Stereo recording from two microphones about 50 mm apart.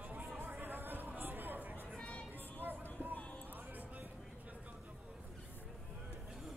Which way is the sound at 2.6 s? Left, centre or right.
Right.